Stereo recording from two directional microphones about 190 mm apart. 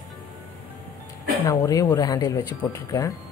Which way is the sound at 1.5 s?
15° left (ahead or behind).